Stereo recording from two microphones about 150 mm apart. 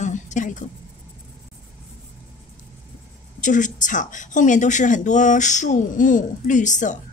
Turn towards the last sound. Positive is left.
turn(degrees=55)  # may be behind; listen again after turning